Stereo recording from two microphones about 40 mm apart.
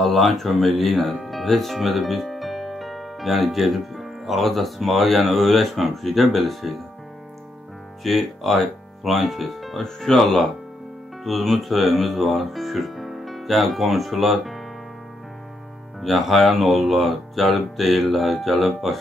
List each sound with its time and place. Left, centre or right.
0.0 s speech: centre
8.0 s speech: centre
9.8 s speech: centre
11.2 s speech: centre
16.0 s speech: centre